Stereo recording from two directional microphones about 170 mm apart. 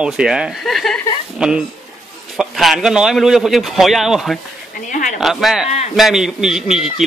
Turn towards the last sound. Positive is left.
turn(degrees=-5)  # may be behind; listen again after turning